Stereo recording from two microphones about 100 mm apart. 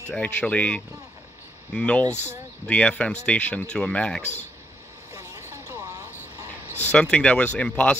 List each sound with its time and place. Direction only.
0.1 s speech: 10° left (ahead or behind)
5.1 s vehicle: 30° right (ahead or behind)
6.9 s speech: 10° left (ahead or behind)